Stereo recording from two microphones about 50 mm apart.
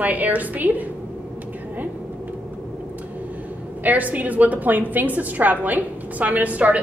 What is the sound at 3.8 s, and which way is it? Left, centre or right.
A woman's voice, right.